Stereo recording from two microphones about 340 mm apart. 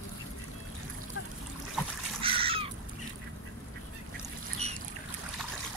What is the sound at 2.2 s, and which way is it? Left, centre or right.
Crow, centre.